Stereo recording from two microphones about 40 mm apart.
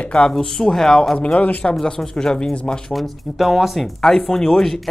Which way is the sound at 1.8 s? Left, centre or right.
Centre.